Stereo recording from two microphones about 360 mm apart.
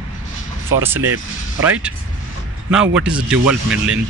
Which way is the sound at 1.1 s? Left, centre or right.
Centre.